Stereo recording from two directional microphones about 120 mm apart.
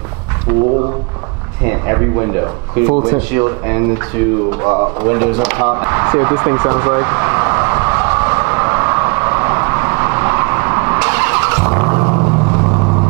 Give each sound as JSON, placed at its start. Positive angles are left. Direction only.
{"t": 0.5, "sound": "speech", "side_deg": -20}
{"t": 5.7, "sound": "vehicle", "side_deg": -25}